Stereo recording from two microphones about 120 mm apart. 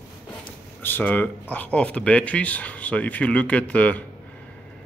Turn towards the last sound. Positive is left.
turn(degrees=10)  # may be behind; listen again after turning